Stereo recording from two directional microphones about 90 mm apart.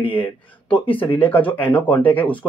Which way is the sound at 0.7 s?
75° left (ahead or behind).